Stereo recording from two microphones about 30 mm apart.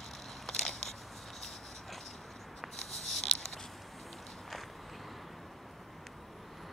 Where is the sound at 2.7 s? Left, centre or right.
Centre.